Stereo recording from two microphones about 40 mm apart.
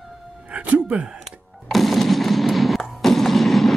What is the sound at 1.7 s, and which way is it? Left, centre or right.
Fireworks, centre.